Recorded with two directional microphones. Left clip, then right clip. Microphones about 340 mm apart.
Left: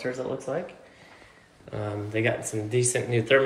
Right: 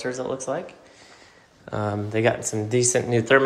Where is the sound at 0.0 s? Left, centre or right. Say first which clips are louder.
Right 3 dB; centre.